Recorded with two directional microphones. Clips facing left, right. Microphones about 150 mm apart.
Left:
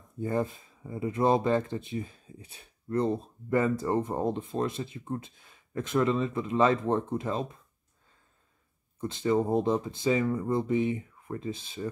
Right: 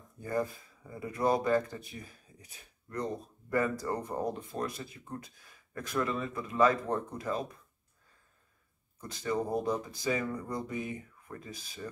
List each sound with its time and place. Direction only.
0.2 s speech: 25° left (ahead or behind)
9.0 s speech: 25° left (ahead or behind)